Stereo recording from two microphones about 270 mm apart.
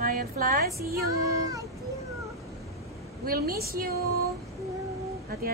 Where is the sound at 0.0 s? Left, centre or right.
Right.